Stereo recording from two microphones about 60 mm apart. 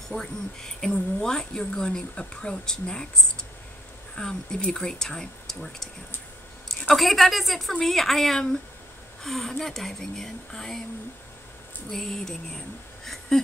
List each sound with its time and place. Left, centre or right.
0.1 s a woman's voice: centre
11.9 s speech: centre